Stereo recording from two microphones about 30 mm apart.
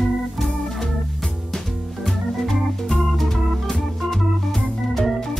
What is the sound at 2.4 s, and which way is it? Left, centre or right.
Organ, centre.